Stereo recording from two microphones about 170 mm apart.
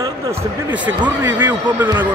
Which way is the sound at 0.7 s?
10° right (ahead or behind).